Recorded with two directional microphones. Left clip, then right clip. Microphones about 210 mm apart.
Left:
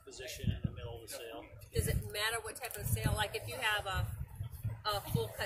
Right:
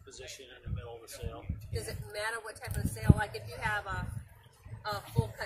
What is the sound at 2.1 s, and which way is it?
Speech, 45° left (ahead or behind).